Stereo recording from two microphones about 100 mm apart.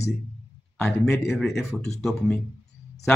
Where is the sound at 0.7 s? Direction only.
5° left (ahead or behind).